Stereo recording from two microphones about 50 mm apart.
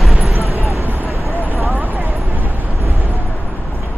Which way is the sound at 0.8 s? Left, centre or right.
Right.